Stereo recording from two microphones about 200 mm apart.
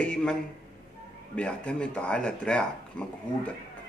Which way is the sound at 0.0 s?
5° left (ahead or behind).